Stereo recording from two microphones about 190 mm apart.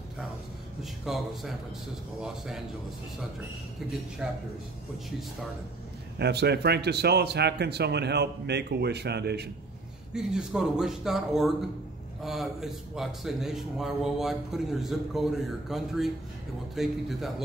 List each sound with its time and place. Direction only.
1.0 s a man's voice: centre (ahead or behind)
4.2 s a man's voice: centre (ahead or behind)
6.1 s a man's voice: 60° right (ahead or behind)
10.1 s a man's voice: 5° right (ahead or behind)